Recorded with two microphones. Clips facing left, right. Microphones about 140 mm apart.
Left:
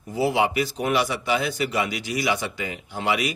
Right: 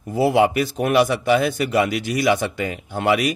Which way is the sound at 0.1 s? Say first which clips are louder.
Right 5 dB; 50° right (ahead or behind).